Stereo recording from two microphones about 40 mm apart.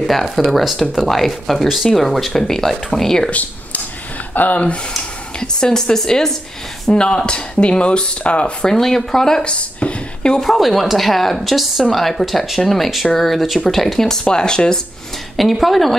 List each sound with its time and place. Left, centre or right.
0.1 s speech: centre
3.3 s speech: left
4.3 s a sound: left
5.4 s speech: centre; by 8.5 s left
8.6 s speech: centre
9.4 s a sound: left
10.4 s speech: centre
14.2 s speech: left
15.3 s speech: centre